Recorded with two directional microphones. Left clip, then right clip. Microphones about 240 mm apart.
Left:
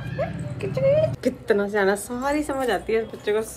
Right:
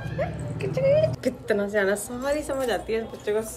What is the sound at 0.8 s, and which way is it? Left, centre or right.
A woman's voice, centre.